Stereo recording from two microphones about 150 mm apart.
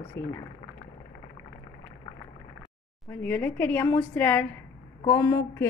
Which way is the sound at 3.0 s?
10° left (ahead or behind).